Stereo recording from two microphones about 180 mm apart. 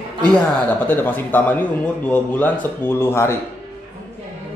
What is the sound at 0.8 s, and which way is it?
Speech, 10° left (ahead or behind).